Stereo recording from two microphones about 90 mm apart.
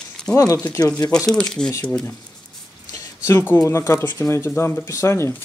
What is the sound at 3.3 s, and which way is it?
Speech, 30° left (ahead or behind).